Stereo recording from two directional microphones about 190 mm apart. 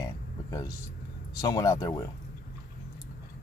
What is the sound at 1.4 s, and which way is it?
Speech, 20° left (ahead or behind).